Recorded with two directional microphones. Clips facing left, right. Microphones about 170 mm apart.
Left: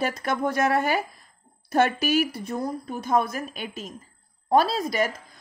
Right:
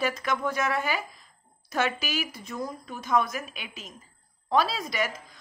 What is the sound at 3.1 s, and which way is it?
A woman's voice, 35° left (ahead or behind).